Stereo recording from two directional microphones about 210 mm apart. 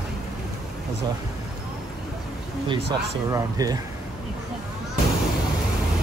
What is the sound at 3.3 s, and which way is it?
Speech, 15° right (ahead or behind).